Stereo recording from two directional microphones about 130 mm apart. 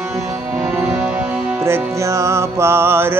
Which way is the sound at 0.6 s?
10° right (ahead or behind).